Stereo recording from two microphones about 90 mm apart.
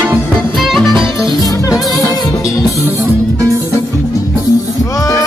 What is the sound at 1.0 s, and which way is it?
Music, 55° right (ahead or behind).